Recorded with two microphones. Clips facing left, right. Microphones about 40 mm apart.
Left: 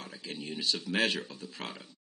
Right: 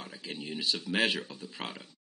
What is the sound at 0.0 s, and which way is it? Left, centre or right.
Speech, centre.